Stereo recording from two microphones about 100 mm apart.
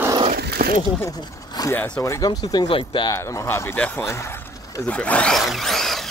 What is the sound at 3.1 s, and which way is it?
Speech, 30° left (ahead or behind).